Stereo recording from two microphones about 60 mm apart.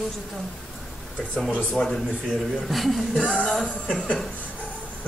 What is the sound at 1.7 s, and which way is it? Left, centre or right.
A man's voice, centre.